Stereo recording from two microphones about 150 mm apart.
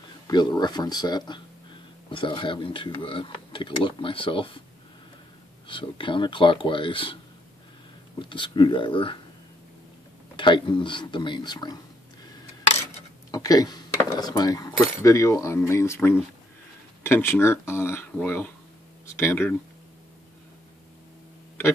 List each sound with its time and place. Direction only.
0.3 s speech: 30° left (ahead or behind)
5.7 s speech: 35° left (ahead or behind)
8.2 s speech: 35° left (ahead or behind)
10.3 s speech: 30° left (ahead or behind)
13.3 s speech: 25° left (ahead or behind)